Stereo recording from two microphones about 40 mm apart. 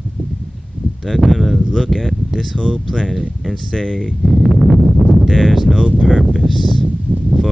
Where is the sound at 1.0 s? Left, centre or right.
Centre.